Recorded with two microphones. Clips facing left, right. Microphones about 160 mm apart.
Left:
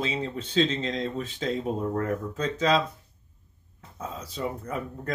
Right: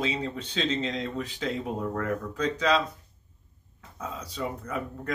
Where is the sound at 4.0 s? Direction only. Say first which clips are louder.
Left 1 dB; 30° left (ahead or behind).